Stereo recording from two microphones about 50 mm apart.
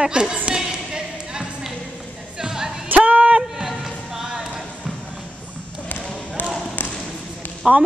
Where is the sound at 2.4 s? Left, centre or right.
Centre.